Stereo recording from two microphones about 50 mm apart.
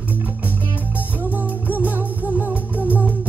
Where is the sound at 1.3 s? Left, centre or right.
Right.